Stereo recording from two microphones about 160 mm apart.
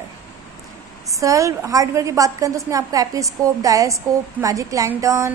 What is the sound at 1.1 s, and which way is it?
A woman's voice, 20° right (ahead or behind).